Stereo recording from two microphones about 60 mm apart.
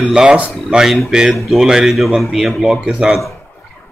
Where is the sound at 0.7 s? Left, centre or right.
Centre.